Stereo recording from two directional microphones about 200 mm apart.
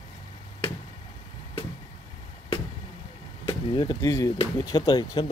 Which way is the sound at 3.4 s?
20° left (ahead or behind).